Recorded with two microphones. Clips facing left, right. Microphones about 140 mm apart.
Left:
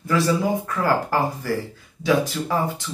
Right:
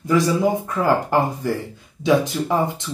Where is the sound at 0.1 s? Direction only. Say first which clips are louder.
Right 3 dB; 20° right (ahead or behind).